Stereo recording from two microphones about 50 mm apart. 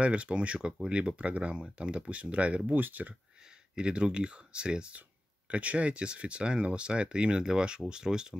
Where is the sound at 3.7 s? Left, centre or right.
Centre.